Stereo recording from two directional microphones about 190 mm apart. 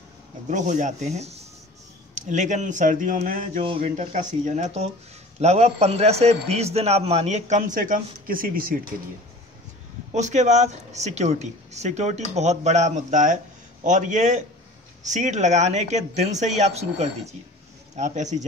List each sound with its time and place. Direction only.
0.5 s a man's voice: 40° right (ahead or behind)
3.6 s a man's voice: 30° right (ahead or behind); by 8.9 s 50° right (ahead or behind)
10.1 s a man's voice: 40° right (ahead or behind)